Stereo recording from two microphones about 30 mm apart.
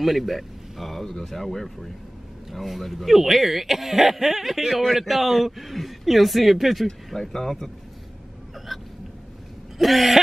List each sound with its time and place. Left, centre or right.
0.0 s a sound: centre
0.9 s speech: centre
2.8 s a man's voice: centre
7.2 s speech: centre
8.7 s hiccup: centre
9.8 s a man's voice: centre